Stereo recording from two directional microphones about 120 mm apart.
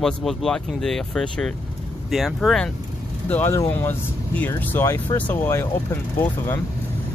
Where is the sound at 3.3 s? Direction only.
15° left (ahead or behind).